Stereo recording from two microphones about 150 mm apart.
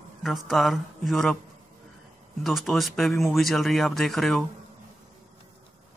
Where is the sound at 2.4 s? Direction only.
Centre (ahead or behind).